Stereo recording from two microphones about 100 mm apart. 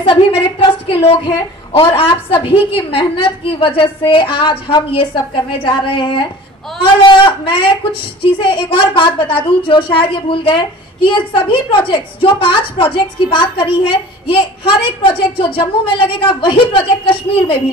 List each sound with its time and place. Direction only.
0.0 s a woman's voice: 65° left (ahead or behind)